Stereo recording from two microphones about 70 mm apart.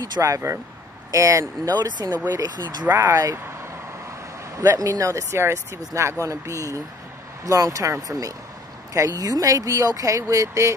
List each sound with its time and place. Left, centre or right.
0.2 s speech: right
1.7 s speech: right
2.3 s speech: right
3.0 s speech: right
4.6 s speech: right